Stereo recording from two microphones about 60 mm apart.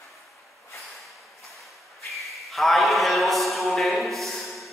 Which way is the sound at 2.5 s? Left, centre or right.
Centre.